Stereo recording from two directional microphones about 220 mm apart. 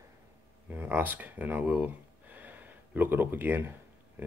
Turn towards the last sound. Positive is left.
turn(degrees=-10)  # may be behind; listen again after turning